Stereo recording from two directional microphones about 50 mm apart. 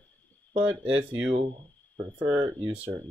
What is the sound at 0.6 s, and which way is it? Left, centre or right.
Speech, right.